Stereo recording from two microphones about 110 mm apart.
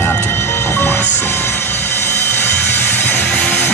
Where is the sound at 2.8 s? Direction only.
20° left (ahead or behind).